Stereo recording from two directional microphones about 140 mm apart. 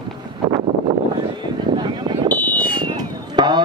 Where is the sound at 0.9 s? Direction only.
25° right (ahead or behind).